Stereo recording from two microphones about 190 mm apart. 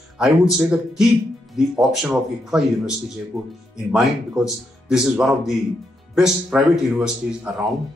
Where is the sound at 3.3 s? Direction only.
15° right (ahead or behind).